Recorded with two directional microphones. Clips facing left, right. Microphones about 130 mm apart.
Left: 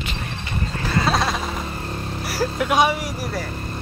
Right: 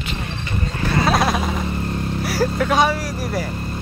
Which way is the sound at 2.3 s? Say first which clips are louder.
Right 2 dB; 10° left (ahead or behind).